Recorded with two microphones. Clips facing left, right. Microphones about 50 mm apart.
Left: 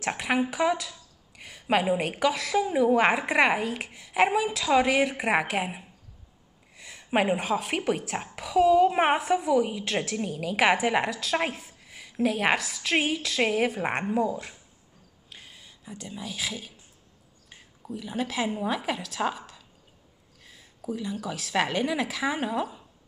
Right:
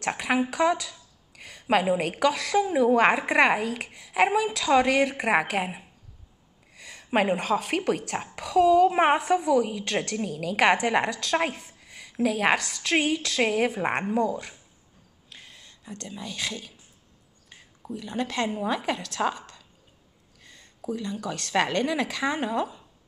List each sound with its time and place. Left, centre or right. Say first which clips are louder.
0.0 s a woman's voice: right 1 dB; centre
15.2 s a sound: even; centre
17.9 s a woman's voice: right 1 dB; centre